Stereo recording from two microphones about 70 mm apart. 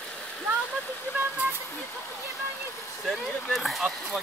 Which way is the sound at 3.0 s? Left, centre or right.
Centre.